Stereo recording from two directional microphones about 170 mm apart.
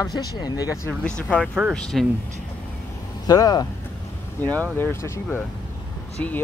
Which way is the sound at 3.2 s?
20° left (ahead or behind).